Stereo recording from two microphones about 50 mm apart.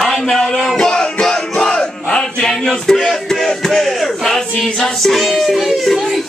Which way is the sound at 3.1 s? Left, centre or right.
Centre.